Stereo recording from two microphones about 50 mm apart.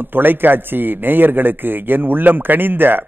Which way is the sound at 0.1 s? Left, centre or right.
Right.